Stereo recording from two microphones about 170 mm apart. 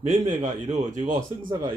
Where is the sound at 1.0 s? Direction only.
25° right (ahead or behind).